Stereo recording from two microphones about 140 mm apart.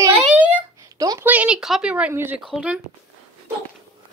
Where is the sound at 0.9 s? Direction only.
25° right (ahead or behind).